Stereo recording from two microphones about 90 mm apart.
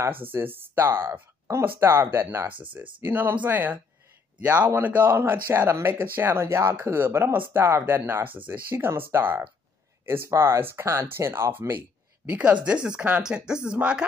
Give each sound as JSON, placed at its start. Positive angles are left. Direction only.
{"t": 0.2, "sound": "speech", "side_deg": -25}
{"t": 12.3, "sound": "speech", "side_deg": -15}